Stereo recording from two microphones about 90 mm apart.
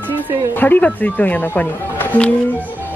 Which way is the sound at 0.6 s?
20° left (ahead or behind).